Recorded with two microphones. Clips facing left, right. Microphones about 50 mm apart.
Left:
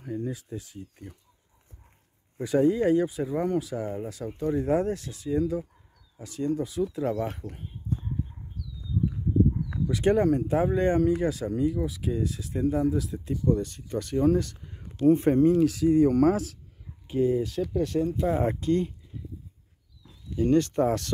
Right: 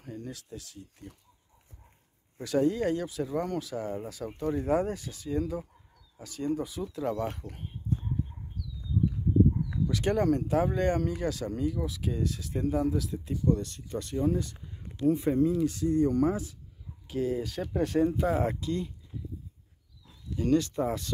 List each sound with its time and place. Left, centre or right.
0.0 s speech: centre
2.3 s speech: centre
7.0 s speech: centre
9.8 s speech: centre
13.5 s speech: left
14.2 s speech: left
16.2 s speech: left
17.1 s speech: centre
17.7 s speech: right
18.1 s speech: centre
18.6 s speech: left
20.3 s speech: left
20.6 s speech: left